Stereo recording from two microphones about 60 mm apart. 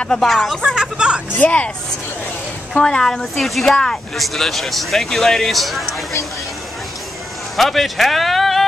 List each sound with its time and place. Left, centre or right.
0.0 s speech: centre
0.3 s speech: centre
0.7 s speech: centre
1.4 s speech: left
2.8 s speech: centre
3.7 s speech: centre
7.5 s a man's voice: centre